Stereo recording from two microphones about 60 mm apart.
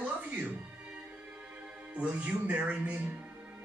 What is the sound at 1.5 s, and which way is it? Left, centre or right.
Music, right.